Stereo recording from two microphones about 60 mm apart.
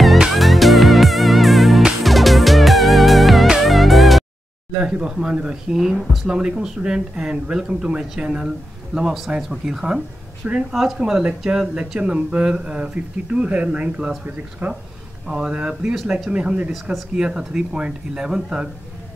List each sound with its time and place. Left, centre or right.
0.3 s music: centre
5.0 s speech: centre
15.2 s speech: centre